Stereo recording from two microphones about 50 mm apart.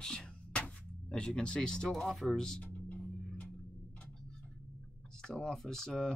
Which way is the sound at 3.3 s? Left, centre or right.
Left.